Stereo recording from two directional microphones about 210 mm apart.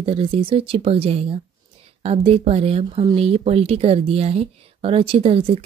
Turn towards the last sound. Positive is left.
turn(degrees=-25)  # may be behind; listen again after turning